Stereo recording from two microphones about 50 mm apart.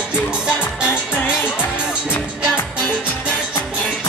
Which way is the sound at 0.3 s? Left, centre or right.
Centre.